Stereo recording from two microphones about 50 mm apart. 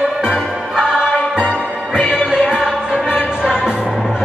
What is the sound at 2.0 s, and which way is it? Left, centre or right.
Music, left.